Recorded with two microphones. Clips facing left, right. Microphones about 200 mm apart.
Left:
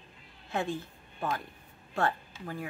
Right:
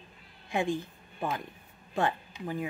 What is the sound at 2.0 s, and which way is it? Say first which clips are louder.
Speech: right 1 dB; 15° right (ahead or behind).